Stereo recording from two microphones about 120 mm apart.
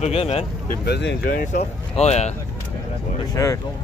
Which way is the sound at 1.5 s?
65° left (ahead or behind).